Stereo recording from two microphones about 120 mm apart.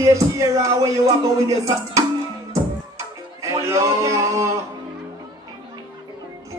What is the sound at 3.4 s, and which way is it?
A man's voice, 25° right (ahead or behind).